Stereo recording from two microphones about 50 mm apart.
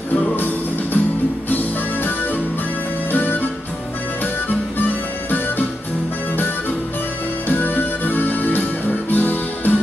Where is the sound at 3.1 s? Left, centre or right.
Left.